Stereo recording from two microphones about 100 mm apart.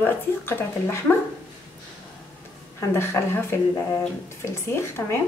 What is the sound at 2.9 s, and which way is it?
Speech, 25° left (ahead or behind).